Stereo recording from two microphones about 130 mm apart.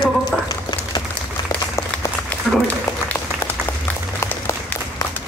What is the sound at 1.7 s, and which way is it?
Applause, 20° left (ahead or behind).